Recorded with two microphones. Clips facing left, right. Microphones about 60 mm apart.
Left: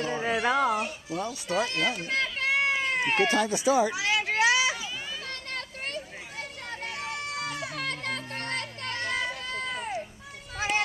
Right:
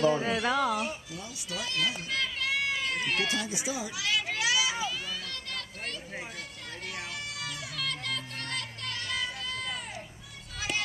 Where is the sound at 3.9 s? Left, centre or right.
Left.